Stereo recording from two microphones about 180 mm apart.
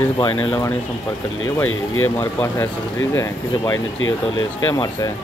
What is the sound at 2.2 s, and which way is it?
Speech, 10° left (ahead or behind).